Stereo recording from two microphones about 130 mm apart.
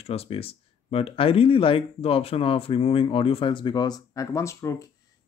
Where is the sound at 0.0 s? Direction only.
50° left (ahead or behind).